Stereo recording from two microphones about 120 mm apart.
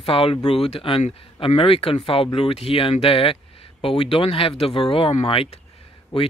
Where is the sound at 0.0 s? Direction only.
50° left (ahead or behind).